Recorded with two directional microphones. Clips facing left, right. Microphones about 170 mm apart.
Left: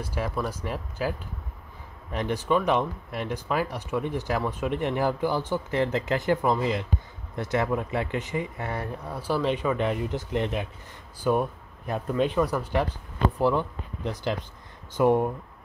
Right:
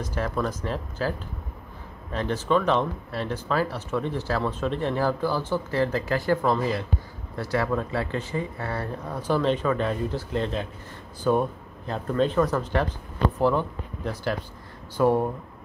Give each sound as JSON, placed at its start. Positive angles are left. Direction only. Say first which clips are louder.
{"t": 0.0, "sound": "speech", "louder": "right 2 dB", "side_deg": 10}
{"t": 2.1, "sound": "speech", "louder": "right 1 dB", "side_deg": 15}
{"t": 14.0, "sound": "speech", "louder": "right 1 dB", "side_deg": 20}